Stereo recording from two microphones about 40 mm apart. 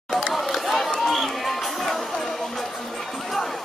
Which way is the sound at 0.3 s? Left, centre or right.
Centre.